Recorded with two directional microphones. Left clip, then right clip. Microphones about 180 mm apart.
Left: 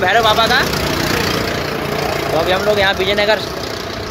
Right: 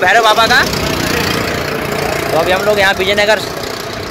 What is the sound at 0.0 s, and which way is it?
Speech, 15° right (ahead or behind).